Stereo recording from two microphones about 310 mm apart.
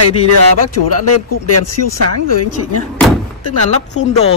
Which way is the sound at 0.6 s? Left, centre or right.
Left.